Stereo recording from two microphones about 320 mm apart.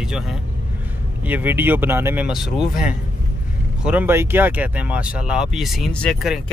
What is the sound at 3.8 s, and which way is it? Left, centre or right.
Speech, centre.